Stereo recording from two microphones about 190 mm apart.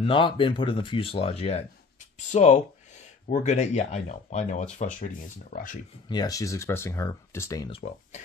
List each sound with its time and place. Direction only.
0.0 s speech: 25° left (ahead or behind); by 5.8 s 45° left (ahead or behind)
6.0 s speech: 20° left (ahead or behind)
7.7 s speech: 35° left (ahead or behind)